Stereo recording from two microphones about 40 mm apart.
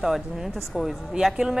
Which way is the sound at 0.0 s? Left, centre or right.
Centre.